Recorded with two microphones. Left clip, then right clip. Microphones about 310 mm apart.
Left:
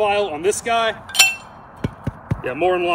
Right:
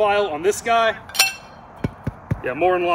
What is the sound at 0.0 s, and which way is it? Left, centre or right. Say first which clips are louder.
Speech: even; centre.